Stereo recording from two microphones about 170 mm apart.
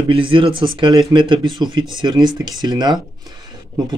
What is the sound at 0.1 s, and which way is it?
Speech, 30° right (ahead or behind).